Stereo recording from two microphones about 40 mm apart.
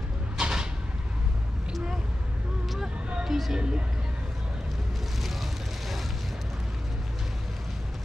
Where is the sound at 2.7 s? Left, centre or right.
Centre.